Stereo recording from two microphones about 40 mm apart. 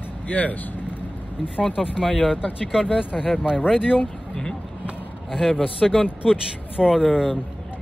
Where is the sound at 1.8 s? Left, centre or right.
Centre.